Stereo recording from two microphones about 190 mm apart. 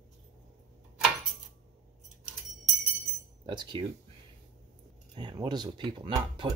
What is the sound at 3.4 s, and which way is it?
Speech, 25° right (ahead or behind).